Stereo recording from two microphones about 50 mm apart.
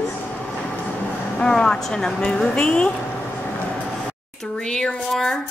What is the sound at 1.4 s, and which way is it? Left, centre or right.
Speech, centre.